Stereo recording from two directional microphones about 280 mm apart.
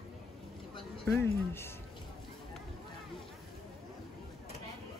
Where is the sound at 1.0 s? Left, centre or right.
Centre.